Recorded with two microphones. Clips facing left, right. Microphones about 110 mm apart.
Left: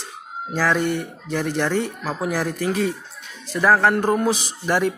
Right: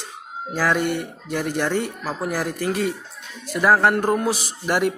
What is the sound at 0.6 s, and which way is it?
Speech, 10° right (ahead or behind).